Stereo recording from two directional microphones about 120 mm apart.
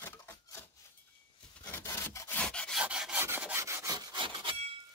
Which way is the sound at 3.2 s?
15° right (ahead or behind).